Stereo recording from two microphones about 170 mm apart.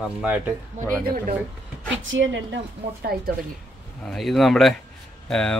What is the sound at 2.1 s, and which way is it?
A woman's voice, 90° right.